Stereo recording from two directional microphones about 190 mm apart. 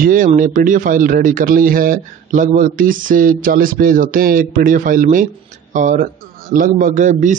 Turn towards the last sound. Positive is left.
turn(degrees=-40)  # may be behind; listen again after turning